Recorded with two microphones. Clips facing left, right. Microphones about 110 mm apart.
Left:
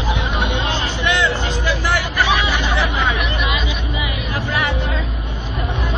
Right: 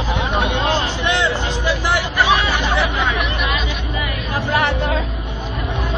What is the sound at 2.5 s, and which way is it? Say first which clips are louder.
Hubbub: right 1 dB; 15° right (ahead or behind).